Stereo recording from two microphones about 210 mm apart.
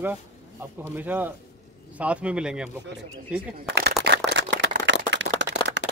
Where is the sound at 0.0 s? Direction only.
10° right (ahead or behind).